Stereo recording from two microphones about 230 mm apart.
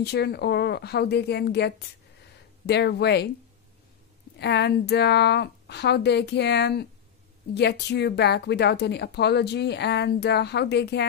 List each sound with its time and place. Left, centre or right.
0.0 s speech: left
4.4 s speech: left